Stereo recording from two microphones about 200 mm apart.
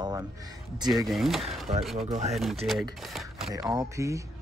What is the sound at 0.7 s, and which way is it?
Speech, 20° right (ahead or behind).